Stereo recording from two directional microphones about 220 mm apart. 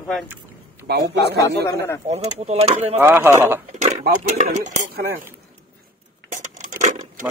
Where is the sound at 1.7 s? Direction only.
10° left (ahead or behind).